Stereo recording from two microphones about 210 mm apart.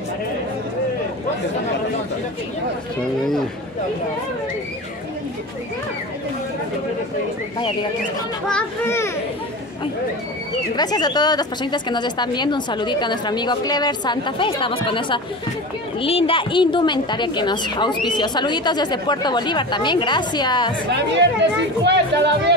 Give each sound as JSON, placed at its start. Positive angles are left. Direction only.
{"t": 8.5, "sound": "a child's voice", "side_deg": 10}
{"t": 10.8, "sound": "speech", "side_deg": 20}
{"t": 21.1, "sound": "speech", "side_deg": -55}